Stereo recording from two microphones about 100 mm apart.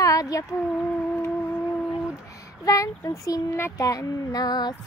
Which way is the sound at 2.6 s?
35° left (ahead or behind).